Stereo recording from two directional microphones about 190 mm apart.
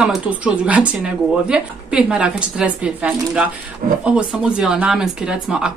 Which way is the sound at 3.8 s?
50° right (ahead or behind).